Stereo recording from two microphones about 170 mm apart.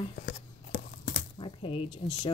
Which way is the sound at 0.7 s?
65° left (ahead or behind).